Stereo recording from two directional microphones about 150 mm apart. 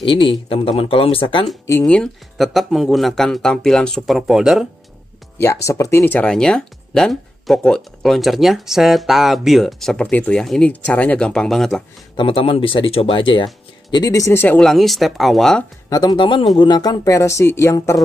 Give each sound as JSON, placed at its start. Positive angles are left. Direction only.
{"t": 0.0, "sound": "speech", "side_deg": 35}
{"t": 1.9, "sound": "speech", "side_deg": 5}
{"t": 5.4, "sound": "speech", "side_deg": 20}
{"t": 12.2, "sound": "speech", "side_deg": 35}
{"t": 14.6, "sound": "speech", "side_deg": 0}
{"t": 15.9, "sound": "speech", "side_deg": 25}